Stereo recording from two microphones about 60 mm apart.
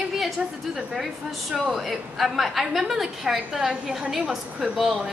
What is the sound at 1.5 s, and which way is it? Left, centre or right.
A woman's voice, centre.